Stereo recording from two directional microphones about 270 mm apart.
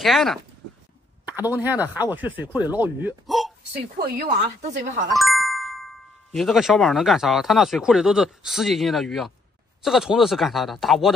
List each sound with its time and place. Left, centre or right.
0.0 s speech: centre
1.4 s speech: centre
3.9 s speech: right
5.1 s music: centre
6.3 s speech: centre